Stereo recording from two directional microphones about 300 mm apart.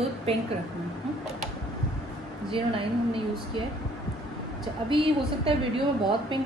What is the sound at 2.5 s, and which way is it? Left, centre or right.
Speech, centre.